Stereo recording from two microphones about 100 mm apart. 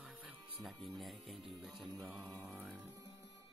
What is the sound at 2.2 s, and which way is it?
Mantra, 15° left (ahead or behind).